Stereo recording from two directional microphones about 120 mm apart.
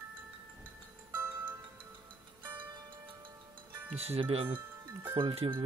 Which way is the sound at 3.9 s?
55° right (ahead or behind).